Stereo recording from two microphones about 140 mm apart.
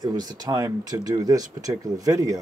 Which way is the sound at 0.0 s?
30° right (ahead or behind).